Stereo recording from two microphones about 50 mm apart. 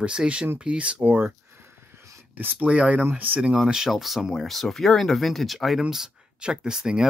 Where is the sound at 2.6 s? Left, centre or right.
Right.